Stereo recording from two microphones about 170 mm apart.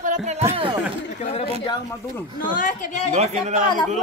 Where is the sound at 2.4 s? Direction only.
50° left (ahead or behind).